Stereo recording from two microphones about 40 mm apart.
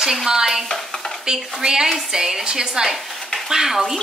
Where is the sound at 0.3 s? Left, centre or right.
Centre.